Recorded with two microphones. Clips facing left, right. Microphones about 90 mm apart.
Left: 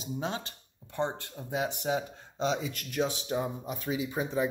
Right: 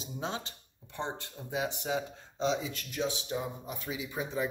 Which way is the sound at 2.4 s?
50° left (ahead or behind).